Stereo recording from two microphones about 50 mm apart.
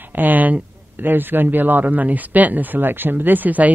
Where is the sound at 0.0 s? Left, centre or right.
Right.